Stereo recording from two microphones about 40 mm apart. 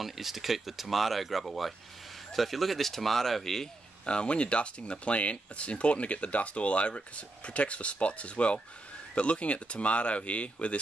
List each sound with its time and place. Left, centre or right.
0.0 s speech: centre
4.0 s speech: left